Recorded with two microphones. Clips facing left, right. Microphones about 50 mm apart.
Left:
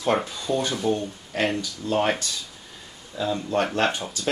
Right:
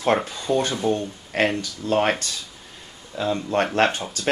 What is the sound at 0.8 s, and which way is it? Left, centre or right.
Speech, right.